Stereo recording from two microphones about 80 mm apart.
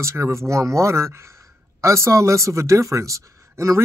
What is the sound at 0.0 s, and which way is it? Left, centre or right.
Speech, right.